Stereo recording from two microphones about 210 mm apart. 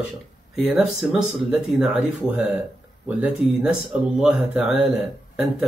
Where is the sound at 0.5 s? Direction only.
Centre (ahead or behind).